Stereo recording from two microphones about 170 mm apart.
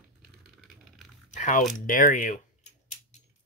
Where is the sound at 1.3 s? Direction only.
45° left (ahead or behind).